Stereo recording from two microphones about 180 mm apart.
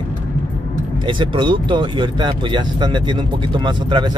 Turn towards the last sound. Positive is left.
turn(degrees=-25)  # may be behind; listen again after turning